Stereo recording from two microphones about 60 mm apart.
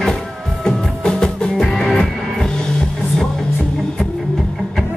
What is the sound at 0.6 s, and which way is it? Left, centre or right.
Music, centre.